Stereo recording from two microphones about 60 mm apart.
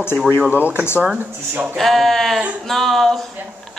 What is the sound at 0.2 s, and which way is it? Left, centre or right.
Speech, centre.